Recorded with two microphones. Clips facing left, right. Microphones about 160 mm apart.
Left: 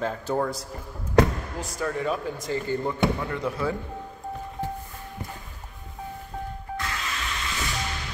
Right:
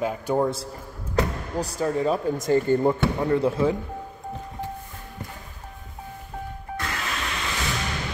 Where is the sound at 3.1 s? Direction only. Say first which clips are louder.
Right 7 dB; 35° right (ahead or behind).